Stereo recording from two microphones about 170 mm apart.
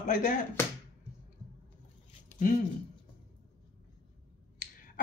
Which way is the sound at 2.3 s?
45° left (ahead or behind).